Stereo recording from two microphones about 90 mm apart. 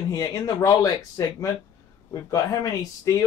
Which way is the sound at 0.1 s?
45° left (ahead or behind).